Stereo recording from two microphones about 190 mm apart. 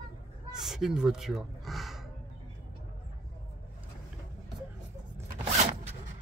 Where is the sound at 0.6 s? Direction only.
Centre (ahead or behind).